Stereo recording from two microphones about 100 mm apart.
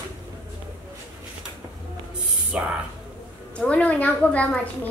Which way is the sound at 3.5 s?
15° left (ahead or behind).